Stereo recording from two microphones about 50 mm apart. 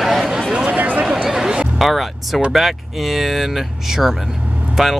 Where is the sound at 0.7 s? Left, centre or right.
Right.